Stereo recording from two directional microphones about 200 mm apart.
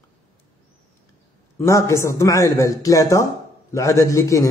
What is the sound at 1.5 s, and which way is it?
A man's voice, 15° left (ahead or behind).